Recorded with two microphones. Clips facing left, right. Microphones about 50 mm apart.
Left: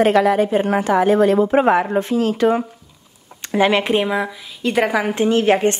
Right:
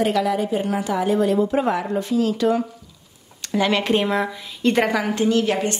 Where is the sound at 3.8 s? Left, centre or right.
Centre.